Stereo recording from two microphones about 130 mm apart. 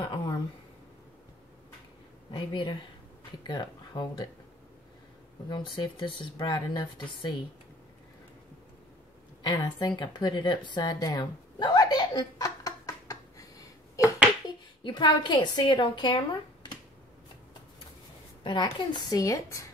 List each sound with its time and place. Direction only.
0.0 s a sound: 40° left (ahead or behind)
3.4 s speech: 35° left (ahead or behind)
5.5 s a woman's voice: 35° left (ahead or behind)
9.4 s a sound: 35° left (ahead or behind)
14.8 s a woman's voice: 35° left (ahead or behind)
18.4 s a woman's voice: 35° left (ahead or behind)